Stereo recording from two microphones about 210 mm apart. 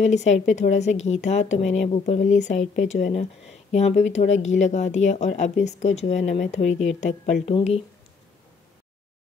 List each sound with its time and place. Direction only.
0.0 s speech: 35° left (ahead or behind)